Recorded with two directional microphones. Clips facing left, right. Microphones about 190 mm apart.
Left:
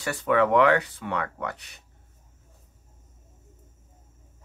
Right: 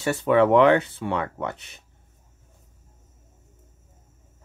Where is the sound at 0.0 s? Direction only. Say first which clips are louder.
Right 4 dB; 25° right (ahead or behind).